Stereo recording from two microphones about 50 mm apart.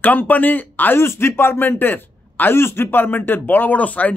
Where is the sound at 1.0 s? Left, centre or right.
Left.